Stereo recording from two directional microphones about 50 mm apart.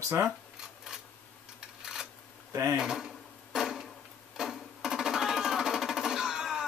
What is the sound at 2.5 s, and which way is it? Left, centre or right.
Speech, right.